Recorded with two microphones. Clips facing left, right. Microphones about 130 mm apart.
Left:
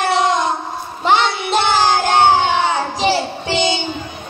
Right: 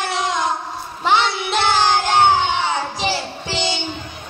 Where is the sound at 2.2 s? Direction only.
85° left.